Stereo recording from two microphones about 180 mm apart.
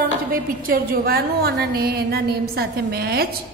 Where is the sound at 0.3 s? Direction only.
50° right (ahead or behind).